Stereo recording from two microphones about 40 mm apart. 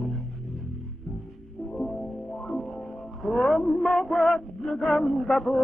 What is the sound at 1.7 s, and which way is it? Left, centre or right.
Music, centre.